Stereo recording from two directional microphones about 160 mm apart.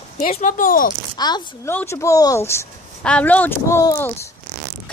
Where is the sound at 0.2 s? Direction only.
50° left (ahead or behind).